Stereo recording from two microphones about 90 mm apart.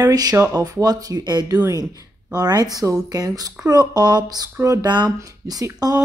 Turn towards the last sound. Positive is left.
turn(degrees=-45)  # may be behind; listen again after turning